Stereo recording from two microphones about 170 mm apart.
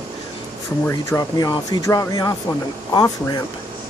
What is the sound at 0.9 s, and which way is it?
Speech, 20° left (ahead or behind).